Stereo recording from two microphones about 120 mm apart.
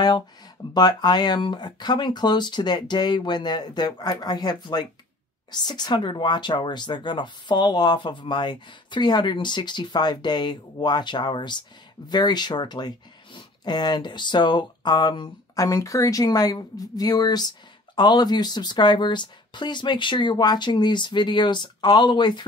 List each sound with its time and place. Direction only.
0.7 s speech: 35° left (ahead or behind)